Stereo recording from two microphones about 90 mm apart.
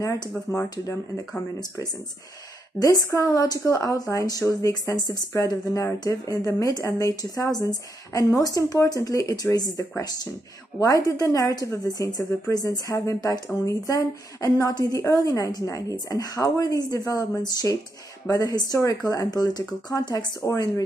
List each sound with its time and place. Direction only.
0.0 s a woman's voice: 35° left (ahead or behind)
2.8 s a woman's voice: 45° left (ahead or behind)